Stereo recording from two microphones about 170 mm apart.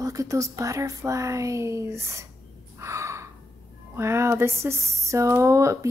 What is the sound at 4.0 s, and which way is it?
Speech, 15° right (ahead or behind).